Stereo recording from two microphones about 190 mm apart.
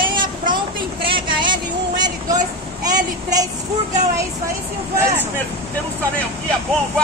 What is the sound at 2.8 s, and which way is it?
Speech, 20° right (ahead or behind).